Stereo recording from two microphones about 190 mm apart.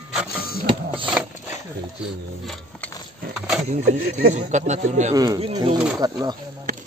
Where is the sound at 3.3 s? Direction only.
5° right (ahead or behind).